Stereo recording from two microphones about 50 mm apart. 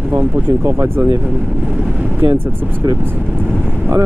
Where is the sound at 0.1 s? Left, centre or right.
Right.